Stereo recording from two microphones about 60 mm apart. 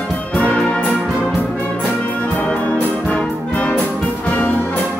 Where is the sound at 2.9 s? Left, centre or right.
Centre.